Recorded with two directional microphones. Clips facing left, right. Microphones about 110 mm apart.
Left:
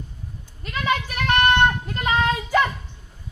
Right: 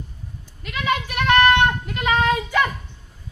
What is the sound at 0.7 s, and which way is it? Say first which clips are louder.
Goat: even; 40° left (ahead or behind).